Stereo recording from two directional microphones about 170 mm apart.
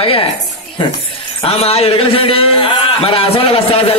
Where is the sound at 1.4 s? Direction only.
35° left (ahead or behind).